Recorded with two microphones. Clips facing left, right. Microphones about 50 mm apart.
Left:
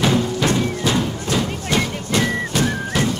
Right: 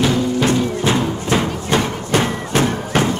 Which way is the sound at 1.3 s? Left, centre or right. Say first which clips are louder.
Right 3 dB; right.